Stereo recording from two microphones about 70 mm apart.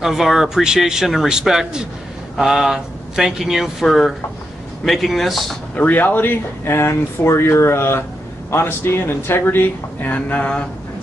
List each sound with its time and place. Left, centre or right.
0.0 s speech: centre
5.8 s speech: left